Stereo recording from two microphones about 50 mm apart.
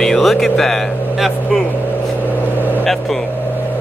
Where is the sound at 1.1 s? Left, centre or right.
Centre.